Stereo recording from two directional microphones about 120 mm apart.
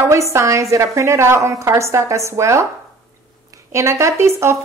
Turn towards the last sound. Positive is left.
turn(degrees=-25)  # may be behind; listen again after turning